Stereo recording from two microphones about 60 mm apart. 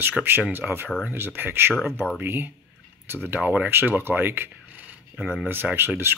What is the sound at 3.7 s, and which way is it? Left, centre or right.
Speech, right.